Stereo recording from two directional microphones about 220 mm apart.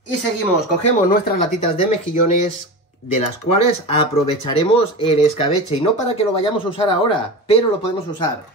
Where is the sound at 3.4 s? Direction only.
25° left (ahead or behind).